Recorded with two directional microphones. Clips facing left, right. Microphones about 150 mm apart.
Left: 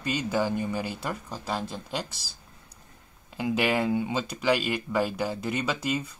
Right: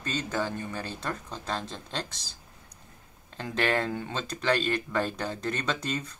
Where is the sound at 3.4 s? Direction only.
10° left (ahead or behind).